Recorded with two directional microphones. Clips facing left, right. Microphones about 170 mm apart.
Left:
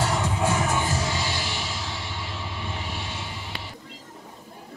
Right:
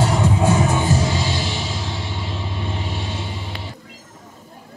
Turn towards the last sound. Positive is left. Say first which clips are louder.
# right 5 dB
turn(degrees=-25)  # may be behind; listen again after turning